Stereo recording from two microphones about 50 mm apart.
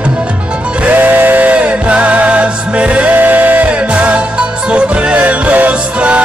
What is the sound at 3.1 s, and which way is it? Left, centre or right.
Music, right.